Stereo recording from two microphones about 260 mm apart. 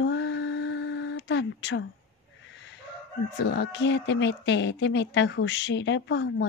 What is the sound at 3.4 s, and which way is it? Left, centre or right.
A woman's voice, left.